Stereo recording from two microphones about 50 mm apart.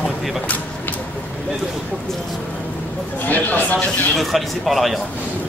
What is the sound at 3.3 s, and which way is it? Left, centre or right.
Speech, left.